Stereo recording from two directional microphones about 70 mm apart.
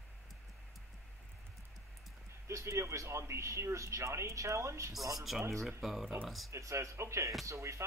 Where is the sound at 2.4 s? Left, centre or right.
Right.